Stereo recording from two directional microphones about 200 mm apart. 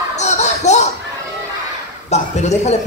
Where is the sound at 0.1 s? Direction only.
35° left (ahead or behind).